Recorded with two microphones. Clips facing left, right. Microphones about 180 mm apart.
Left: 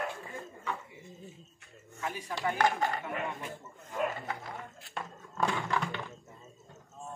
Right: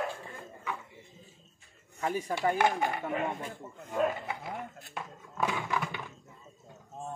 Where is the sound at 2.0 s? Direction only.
45° right (ahead or behind).